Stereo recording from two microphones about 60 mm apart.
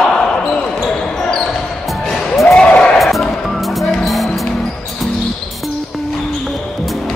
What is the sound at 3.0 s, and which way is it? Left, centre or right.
Music, centre.